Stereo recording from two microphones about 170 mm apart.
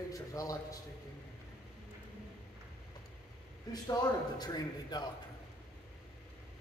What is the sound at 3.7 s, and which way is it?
A man's voice, 25° left (ahead or behind).